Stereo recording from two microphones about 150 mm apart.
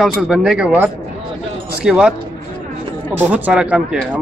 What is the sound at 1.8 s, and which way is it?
Speech, 5° right (ahead or behind).